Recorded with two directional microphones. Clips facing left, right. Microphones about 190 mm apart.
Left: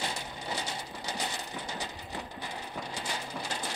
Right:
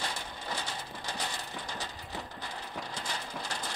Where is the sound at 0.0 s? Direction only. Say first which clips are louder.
Left 2 dB; 15° left (ahead or behind).